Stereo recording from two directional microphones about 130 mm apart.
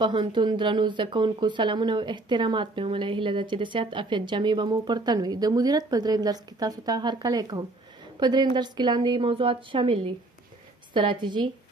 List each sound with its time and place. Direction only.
0.0 s speech: 35° right (ahead or behind)